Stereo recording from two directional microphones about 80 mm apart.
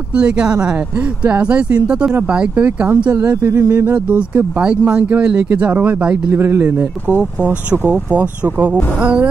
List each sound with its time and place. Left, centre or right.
0.1 s speech: centre
6.3 s speech: right